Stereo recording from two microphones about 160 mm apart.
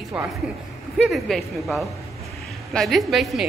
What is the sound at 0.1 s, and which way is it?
A woman's voice, 5° right (ahead or behind).